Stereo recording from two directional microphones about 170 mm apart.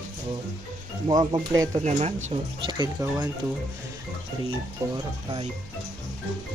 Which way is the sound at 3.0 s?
20° right (ahead or behind).